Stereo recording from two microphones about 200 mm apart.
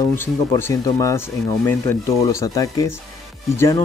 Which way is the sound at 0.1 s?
15° left (ahead or behind).